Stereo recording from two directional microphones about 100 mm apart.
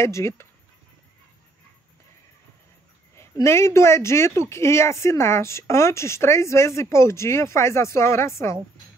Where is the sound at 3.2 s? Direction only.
25° left (ahead or behind).